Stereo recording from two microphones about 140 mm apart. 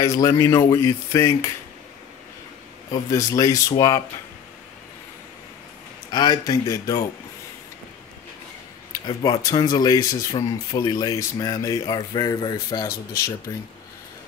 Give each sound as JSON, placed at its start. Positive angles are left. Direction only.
{"t": 0.0, "sound": "speech", "side_deg": 25}
{"t": 2.9, "sound": "speech", "side_deg": 25}
{"t": 6.0, "sound": "speech", "side_deg": 30}
{"t": 9.0, "sound": "speech", "side_deg": 35}